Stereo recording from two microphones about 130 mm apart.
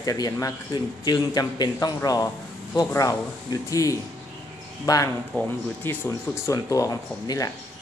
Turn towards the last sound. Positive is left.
turn(degrees=25)  # may be behind; listen again after turning